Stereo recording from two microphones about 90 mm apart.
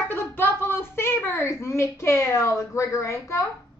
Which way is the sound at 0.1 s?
25° left (ahead or behind).